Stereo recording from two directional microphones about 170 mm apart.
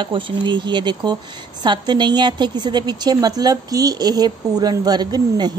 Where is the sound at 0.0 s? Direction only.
30° right (ahead or behind).